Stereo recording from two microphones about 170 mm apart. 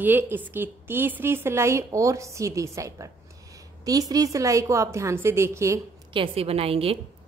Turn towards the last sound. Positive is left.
turn(degrees=-35)  # may be behind; listen again after turning